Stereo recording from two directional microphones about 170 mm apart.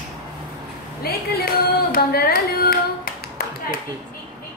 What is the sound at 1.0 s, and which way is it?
Singing, 65° left (ahead or behind).